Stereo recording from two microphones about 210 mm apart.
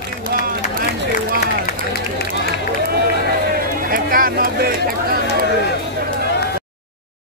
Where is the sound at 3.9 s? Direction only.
40° right (ahead or behind).